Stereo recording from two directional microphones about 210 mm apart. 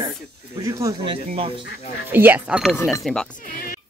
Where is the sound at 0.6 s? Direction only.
15° right (ahead or behind).